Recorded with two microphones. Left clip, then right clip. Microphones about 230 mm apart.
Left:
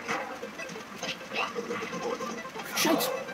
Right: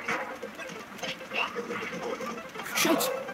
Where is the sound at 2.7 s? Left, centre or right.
Right.